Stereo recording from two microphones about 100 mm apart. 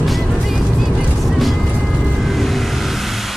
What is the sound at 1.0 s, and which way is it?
Vehicle, centre (ahead or behind).